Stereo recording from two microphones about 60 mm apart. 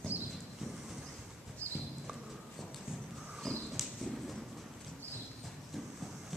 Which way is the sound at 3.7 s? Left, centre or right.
Centre.